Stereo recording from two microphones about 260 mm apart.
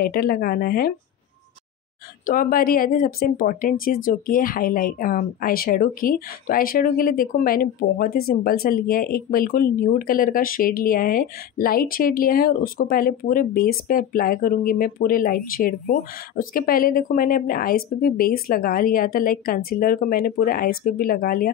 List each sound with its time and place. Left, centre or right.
0.0 s a woman's voice: left
2.2 s a woman's voice: left